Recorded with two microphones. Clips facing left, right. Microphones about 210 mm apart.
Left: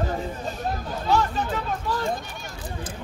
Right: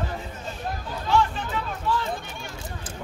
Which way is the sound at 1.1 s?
40° left (ahead or behind).